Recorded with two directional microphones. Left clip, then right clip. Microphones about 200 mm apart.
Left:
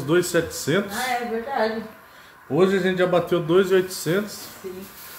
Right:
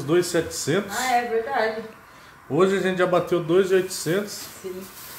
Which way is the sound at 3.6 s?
10° left (ahead or behind).